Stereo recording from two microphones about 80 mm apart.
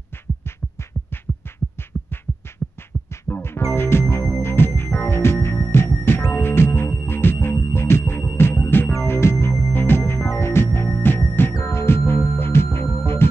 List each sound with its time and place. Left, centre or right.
1.1 s music: left
3.3 s music: left